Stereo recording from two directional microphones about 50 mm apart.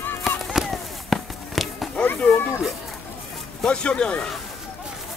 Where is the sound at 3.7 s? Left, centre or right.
Left.